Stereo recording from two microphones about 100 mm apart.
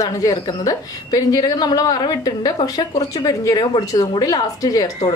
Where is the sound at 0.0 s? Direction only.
35° left (ahead or behind).